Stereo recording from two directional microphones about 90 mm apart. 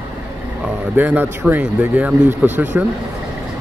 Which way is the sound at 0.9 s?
20° right (ahead or behind).